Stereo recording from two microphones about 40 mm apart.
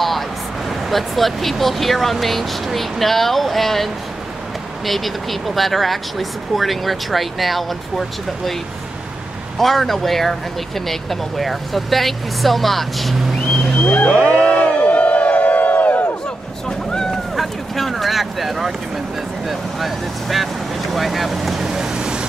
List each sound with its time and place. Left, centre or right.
0.8 s speech: centre
9.6 s speech: centre
13.8 s a sound: left
14.3 s crowd: left
16.6 s a sound: centre
17.4 s speech: centre